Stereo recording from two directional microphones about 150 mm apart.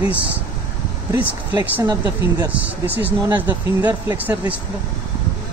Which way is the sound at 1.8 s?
25° right (ahead or behind).